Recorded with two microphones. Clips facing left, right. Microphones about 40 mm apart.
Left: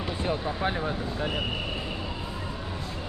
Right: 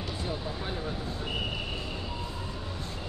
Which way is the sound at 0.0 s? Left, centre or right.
Left.